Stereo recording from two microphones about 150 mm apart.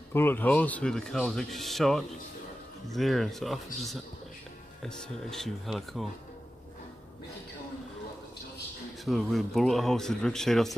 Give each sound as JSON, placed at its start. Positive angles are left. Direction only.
{"t": 0.1, "sound": "speech", "side_deg": 15}
{"t": 9.0, "sound": "speech", "side_deg": 0}